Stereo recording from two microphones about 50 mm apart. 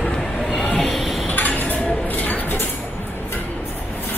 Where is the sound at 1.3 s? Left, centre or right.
Left.